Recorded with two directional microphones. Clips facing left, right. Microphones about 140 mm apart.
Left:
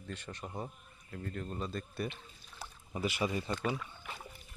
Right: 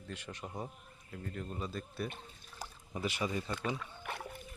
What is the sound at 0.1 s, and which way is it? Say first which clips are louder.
Speech: left 1 dB; 10° right (ahead or behind).